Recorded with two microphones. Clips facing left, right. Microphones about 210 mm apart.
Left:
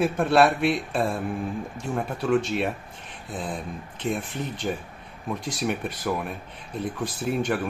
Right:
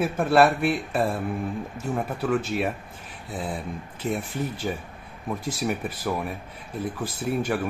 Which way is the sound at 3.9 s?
5° right (ahead or behind).